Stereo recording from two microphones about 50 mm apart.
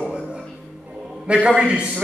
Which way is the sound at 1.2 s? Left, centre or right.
Right.